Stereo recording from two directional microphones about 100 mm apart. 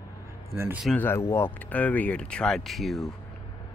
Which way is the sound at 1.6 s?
15° left (ahead or behind).